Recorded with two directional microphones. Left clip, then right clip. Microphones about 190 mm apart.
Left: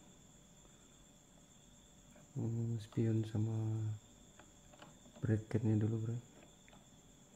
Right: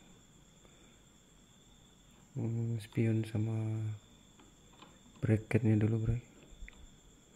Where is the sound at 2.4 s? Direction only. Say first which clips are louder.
Right 3 dB; 5° right (ahead or behind).